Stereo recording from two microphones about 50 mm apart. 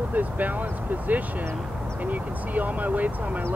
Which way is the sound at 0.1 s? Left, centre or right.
Right.